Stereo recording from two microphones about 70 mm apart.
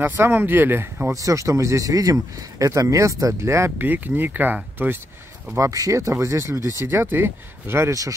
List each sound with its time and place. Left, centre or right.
0.0 s speech: right
1.1 s speech: right
3.7 s speech: right
5.6 s speech: right